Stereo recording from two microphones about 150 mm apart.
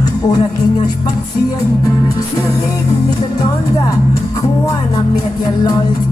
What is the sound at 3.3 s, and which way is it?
Speech, 25° left (ahead or behind).